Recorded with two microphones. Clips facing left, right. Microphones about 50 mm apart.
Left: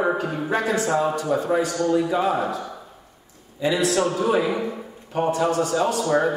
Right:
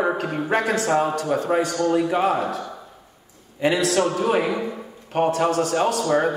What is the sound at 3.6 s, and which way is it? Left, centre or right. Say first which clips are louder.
A man's voice: right 1 dB; right.